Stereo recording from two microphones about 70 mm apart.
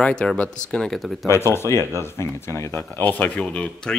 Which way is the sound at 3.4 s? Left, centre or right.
Centre.